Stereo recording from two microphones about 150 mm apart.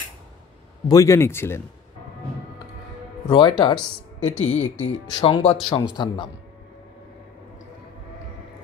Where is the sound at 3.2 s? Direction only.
30° left (ahead or behind).